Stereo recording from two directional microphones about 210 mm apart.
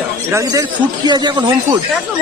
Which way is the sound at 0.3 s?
15° right (ahead or behind).